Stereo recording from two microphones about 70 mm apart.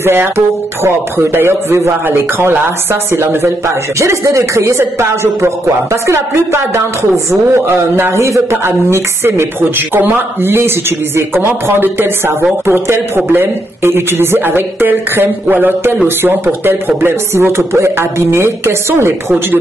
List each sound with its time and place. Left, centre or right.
0.0 s a man's voice: right